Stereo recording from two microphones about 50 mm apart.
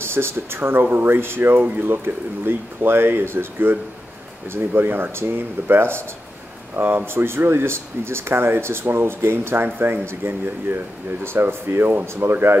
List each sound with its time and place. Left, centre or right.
0.0 s speech: right